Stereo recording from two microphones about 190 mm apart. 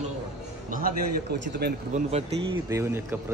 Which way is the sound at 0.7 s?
45° right (ahead or behind).